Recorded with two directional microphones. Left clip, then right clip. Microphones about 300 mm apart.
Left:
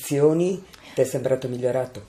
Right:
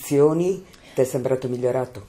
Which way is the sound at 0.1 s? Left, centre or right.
Right.